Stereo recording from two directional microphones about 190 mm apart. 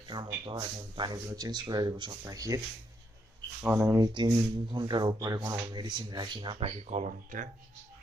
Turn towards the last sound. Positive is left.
turn(degrees=-40)  # may be behind; listen again after turning